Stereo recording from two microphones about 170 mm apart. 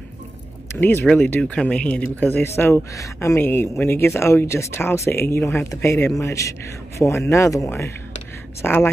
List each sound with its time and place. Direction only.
0.7 s a man's voice: 10° left (ahead or behind)